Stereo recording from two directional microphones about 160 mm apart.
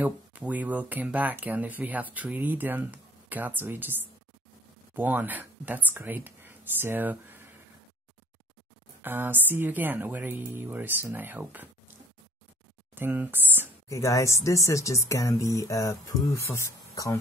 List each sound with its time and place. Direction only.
0.0 s speech: 10° right (ahead or behind)
4.9 s speech: 10° right (ahead or behind)
9.0 s speech: 10° right (ahead or behind)
12.9 s speech: 10° right (ahead or behind)
13.8 s speech: 20° left (ahead or behind)